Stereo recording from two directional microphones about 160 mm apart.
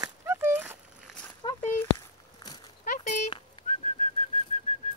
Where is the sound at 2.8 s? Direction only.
55° left (ahead or behind).